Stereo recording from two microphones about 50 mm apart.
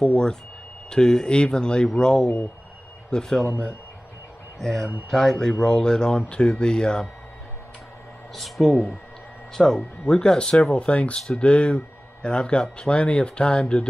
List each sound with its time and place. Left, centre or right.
0.0 s speech: centre
4.6 s speech: centre
8.4 s speech: centre